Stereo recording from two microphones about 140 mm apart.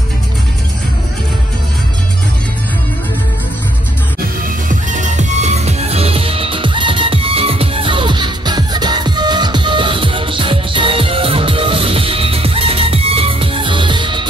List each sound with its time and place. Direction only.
4.6 s music: 60° right (ahead or behind); by 14.2 s 35° right (ahead or behind)